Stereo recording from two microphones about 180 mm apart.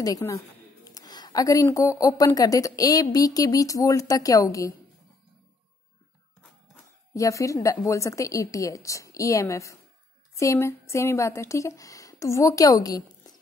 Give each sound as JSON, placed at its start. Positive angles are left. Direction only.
{"t": 0.0, "sound": "speech", "side_deg": 20}
{"t": 7.2, "sound": "a woman's voice", "side_deg": 15}